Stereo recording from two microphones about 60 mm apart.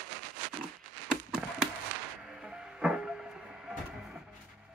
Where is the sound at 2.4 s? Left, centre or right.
Centre.